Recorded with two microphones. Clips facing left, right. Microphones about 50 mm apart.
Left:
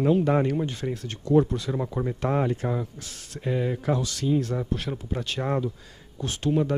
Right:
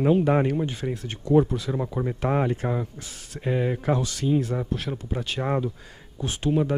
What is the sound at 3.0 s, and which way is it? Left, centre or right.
Speech, centre.